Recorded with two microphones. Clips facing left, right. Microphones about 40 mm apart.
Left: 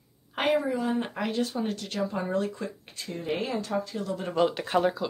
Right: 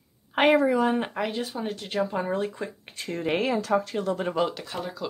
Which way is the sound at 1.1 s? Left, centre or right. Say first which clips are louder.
Even; centre.